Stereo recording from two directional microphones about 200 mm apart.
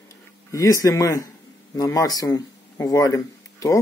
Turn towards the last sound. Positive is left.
turn(degrees=15)  # may be behind; listen again after turning